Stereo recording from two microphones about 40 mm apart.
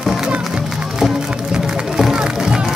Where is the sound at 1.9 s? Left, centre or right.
Centre.